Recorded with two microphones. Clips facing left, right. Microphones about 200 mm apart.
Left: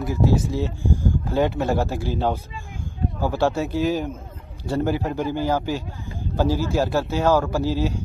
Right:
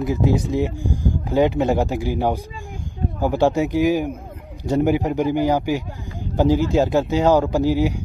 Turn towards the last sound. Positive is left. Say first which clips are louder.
# right 4 dB
turn(degrees=-15)  # may be behind; listen again after turning